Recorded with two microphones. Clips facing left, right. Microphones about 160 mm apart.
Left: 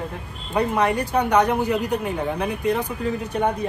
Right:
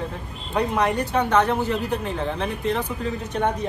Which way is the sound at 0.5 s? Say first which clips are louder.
Left 1 dB; 10° left (ahead or behind).